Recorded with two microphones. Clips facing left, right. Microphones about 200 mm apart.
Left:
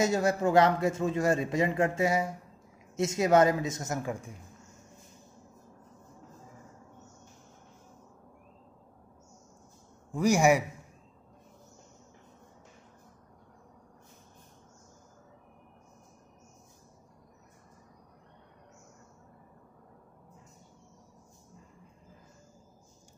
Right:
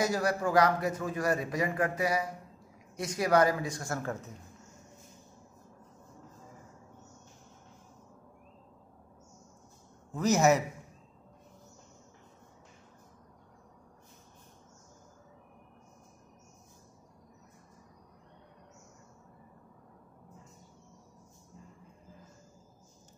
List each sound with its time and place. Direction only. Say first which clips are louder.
0.0 s a man's voice: left 3 dB; 25° left (ahead or behind)
10.1 s a man's voice: left 1 dB; 10° left (ahead or behind)